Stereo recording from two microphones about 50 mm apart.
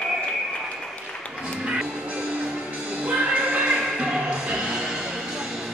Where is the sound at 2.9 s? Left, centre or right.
Right.